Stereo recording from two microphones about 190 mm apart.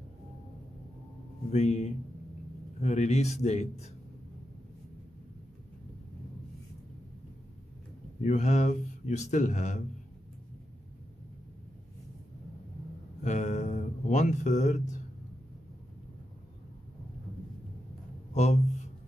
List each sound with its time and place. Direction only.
1.5 s speech: 35° left (ahead or behind)
8.2 s speech: 40° left (ahead or behind)
13.2 s a sound: 40° left (ahead or behind)
18.3 s speech: 35° left (ahead or behind)